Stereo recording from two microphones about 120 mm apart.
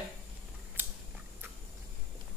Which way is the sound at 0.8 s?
15° right (ahead or behind).